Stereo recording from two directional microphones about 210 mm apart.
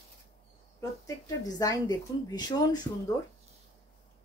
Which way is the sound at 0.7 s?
15° left (ahead or behind).